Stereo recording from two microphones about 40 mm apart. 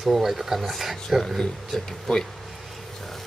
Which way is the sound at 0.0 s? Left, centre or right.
Centre.